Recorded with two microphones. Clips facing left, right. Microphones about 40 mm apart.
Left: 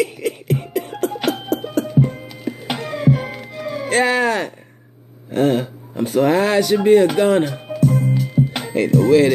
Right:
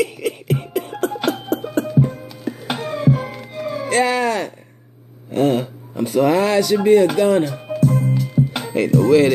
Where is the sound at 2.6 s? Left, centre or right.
Left.